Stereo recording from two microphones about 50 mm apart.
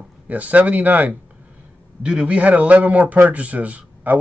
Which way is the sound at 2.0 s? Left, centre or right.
Right.